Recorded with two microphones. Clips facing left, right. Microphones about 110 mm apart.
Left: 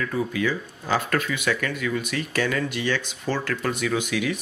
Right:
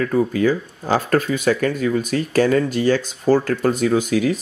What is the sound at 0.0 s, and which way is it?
Speech, 40° right (ahead or behind).